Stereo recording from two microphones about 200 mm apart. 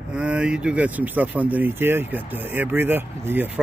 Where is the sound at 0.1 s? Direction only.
5° right (ahead or behind).